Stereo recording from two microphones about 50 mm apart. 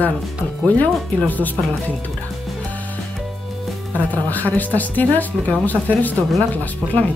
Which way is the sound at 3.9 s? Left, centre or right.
Left.